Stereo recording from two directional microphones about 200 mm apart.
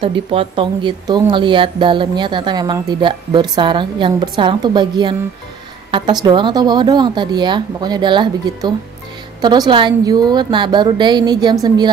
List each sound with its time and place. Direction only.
0.0 s speech: 25° right (ahead or behind)